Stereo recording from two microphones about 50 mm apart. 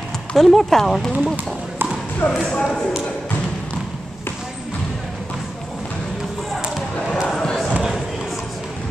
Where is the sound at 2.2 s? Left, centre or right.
Left.